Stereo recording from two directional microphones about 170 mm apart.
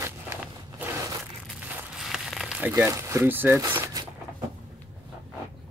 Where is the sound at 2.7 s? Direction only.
20° right (ahead or behind).